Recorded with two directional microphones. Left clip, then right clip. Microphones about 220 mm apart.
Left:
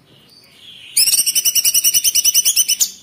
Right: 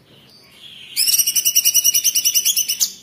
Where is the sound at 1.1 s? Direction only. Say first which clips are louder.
Right 2 dB; 20° left (ahead or behind).